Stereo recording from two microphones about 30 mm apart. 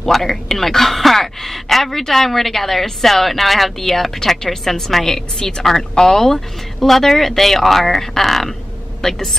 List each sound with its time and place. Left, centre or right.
0.0 s speech: centre
9.0 s speech: centre